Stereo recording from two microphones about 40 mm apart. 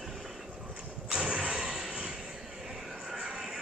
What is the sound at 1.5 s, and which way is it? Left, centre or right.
Vehicle, centre.